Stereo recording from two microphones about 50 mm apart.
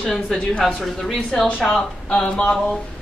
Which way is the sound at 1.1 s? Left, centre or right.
Centre.